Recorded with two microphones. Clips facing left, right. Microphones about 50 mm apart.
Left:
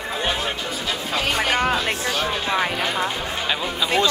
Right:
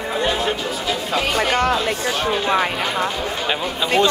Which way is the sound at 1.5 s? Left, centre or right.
Centre.